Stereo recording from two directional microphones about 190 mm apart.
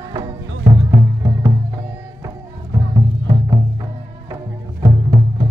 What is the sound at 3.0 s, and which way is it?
Music, 20° right (ahead or behind).